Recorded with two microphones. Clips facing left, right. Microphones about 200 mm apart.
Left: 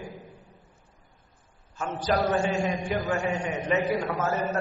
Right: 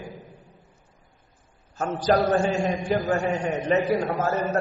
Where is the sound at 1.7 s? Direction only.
40° right (ahead or behind).